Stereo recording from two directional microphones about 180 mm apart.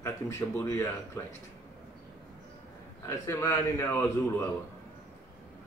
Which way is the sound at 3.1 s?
15° left (ahead or behind).